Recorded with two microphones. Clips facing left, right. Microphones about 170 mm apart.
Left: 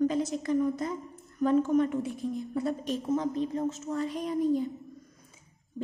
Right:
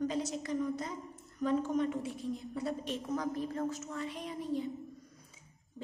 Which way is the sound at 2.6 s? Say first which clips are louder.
Left 3 dB; 40° left (ahead or behind).